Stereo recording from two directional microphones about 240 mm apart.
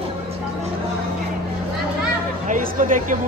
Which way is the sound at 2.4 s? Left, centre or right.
Right.